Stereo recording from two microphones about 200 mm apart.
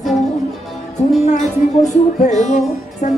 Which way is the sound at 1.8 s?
35° left (ahead or behind).